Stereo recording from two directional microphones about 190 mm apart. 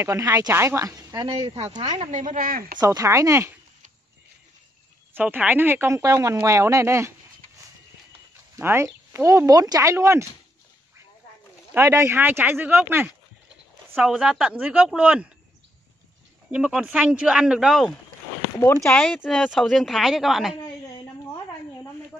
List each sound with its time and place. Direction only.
0.0 s a woman's voice: 15° right (ahead or behind)
1.8 s a woman's voice: 35° right (ahead or behind)
2.8 s a woman's voice: 20° right (ahead or behind)
5.1 s a woman's voice: 10° right (ahead or behind)
8.5 s a woman's voice: 15° right (ahead or behind)
11.7 s a woman's voice: 15° right (ahead or behind)
13.8 s a sound: 10° right (ahead or behind)
14.1 s speech: centre (ahead or behind)
16.4 s speech: 5° right (ahead or behind)